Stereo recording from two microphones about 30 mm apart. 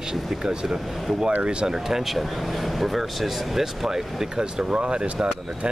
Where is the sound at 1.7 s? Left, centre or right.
Centre.